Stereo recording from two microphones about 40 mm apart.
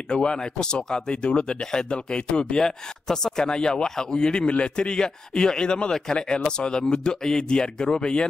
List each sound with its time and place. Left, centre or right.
0.1 s a man's voice: centre